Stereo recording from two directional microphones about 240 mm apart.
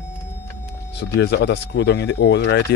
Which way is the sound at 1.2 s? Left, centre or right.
Left.